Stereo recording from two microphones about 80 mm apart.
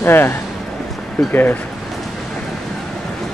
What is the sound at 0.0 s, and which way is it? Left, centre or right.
Speech, left.